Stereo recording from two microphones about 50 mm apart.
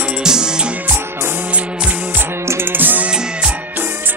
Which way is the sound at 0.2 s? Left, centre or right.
Centre.